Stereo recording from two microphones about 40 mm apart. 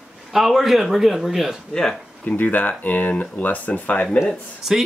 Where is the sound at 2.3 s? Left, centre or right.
Left.